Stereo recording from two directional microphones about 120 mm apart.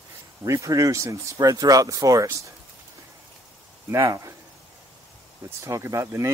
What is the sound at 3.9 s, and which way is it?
Speech, 25° right (ahead or behind).